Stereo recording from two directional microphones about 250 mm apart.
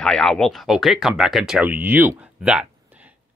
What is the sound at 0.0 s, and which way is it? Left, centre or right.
Speech, centre.